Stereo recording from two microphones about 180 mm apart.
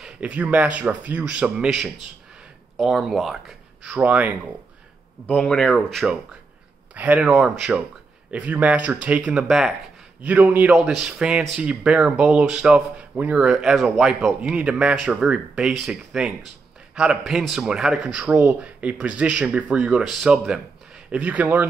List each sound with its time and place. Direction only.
0.0 s speech: 5° right (ahead or behind)
5.2 s speech: 5° left (ahead or behind)